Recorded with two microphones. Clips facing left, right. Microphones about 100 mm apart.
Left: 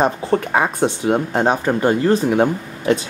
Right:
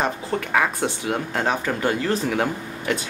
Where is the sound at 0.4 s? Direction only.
25° left (ahead or behind).